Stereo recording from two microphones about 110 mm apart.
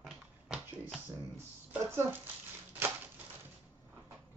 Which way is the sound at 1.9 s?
20° right (ahead or behind).